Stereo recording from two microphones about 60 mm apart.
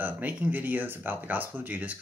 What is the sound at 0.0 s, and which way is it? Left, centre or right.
Speech, right.